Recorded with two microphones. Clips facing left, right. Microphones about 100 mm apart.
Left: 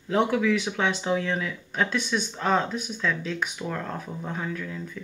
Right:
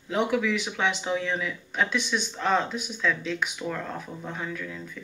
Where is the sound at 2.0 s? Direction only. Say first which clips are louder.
Left 1 dB; 40° left (ahead or behind).